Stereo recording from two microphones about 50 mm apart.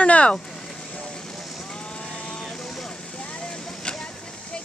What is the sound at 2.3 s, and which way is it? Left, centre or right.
Vehicle, centre.